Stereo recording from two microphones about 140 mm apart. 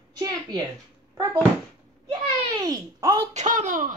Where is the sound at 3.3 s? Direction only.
60° right (ahead or behind).